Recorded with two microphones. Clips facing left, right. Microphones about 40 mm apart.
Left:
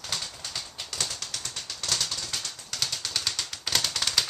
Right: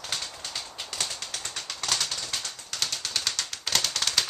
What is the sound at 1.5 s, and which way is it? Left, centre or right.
Bird, right.